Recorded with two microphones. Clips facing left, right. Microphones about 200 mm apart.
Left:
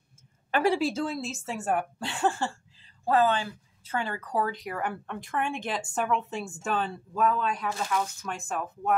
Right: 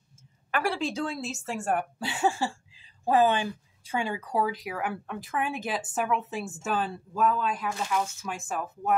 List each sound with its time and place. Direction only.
0.5 s a woman's voice: 20° left (ahead or behind)
0.7 s speech: 5° left (ahead or behind)